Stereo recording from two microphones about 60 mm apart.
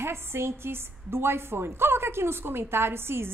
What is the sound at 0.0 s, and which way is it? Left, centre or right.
A woman's voice, right.